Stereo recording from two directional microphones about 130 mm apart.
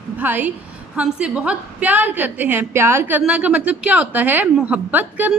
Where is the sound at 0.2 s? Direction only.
15° right (ahead or behind).